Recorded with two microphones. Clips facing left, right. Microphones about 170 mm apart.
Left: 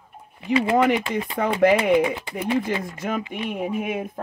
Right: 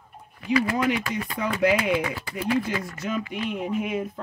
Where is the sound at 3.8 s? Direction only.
55° left (ahead or behind).